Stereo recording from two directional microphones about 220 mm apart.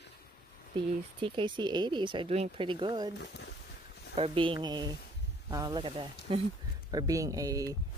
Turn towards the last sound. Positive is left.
turn(degrees=-15)  # may be behind; listen again after turning